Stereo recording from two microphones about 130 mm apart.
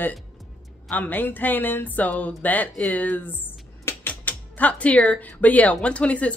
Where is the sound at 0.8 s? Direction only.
10° left (ahead or behind).